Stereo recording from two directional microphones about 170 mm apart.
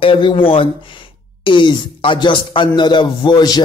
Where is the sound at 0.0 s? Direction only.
30° left (ahead or behind).